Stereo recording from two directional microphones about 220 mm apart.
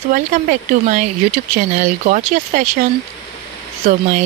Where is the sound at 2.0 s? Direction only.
35° right (ahead or behind).